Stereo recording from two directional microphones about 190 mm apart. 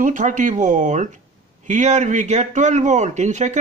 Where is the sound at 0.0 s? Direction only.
45° right (ahead or behind).